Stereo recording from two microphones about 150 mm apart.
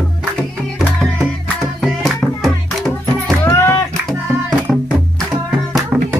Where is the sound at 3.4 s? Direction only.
15° left (ahead or behind).